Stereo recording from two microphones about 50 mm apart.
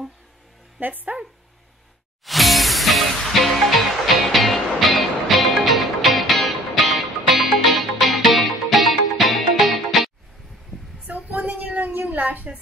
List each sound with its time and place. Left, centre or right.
0.7 s speech: right
2.2 s music: centre
11.1 s a sound: right
11.9 s cat: right